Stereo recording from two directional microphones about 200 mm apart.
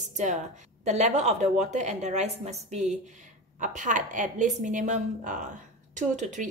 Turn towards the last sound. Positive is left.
turn(degrees=-40)  # may be behind; listen again after turning